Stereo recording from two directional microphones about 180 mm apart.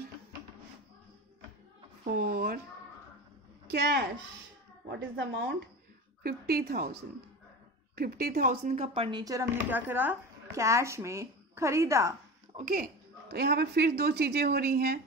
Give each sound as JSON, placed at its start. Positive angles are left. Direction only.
{"t": 2.1, "sound": "a woman's voice", "side_deg": -55}
{"t": 3.7, "sound": "a woman's voice", "side_deg": -65}
{"t": 6.2, "sound": "a woman's voice", "side_deg": -55}
{"t": 9.2, "sound": "speech", "side_deg": -15}
{"t": 12.5, "sound": "a woman's voice", "side_deg": -45}